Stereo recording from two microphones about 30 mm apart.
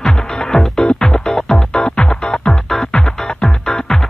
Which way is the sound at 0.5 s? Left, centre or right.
Centre.